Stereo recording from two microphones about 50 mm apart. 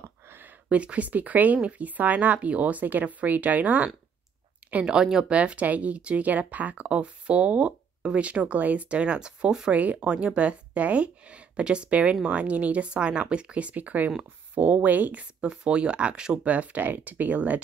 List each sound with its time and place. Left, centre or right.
0.7 s speech: right
4.8 s speech: centre
5.3 s speech: right
9.7 s speech: right
15.4 s speech: right
16.4 s speech: right